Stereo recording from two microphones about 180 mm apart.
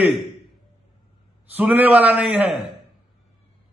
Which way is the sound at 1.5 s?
10° right (ahead or behind).